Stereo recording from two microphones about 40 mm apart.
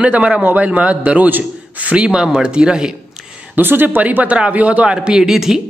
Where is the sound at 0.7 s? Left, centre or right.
Right.